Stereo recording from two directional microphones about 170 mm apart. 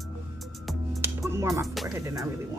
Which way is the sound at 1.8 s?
15° right (ahead or behind).